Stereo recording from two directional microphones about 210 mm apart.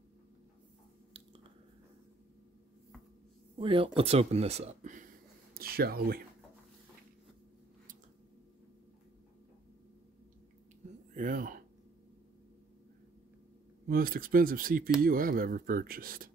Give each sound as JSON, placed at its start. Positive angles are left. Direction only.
{"t": 3.5, "sound": "speech", "side_deg": -25}
{"t": 5.5, "sound": "speech", "side_deg": -45}
{"t": 10.8, "sound": "a sound", "side_deg": -35}
{"t": 11.1, "sound": "speech", "side_deg": -40}
{"t": 13.8, "sound": "speech", "side_deg": -45}